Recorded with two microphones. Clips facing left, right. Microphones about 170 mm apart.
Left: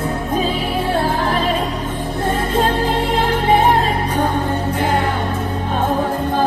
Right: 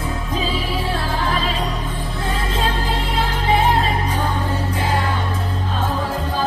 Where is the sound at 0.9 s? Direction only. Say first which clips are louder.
Left 5 dB; 50° left (ahead or behind).